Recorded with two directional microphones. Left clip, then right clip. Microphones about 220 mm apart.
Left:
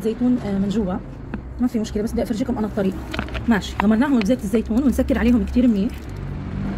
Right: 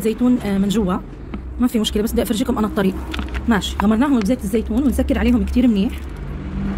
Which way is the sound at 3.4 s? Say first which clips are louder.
Right 2 dB; 10° right (ahead or behind).